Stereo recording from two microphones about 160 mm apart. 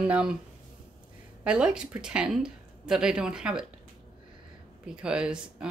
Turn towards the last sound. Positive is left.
turn(degrees=-5)  # may be behind; listen again after turning